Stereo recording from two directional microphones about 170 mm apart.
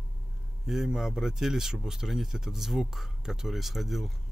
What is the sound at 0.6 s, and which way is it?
Speech, 5° right (ahead or behind).